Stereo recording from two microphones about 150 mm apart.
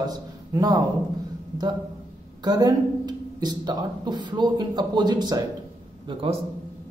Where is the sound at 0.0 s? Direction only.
25° right (ahead or behind).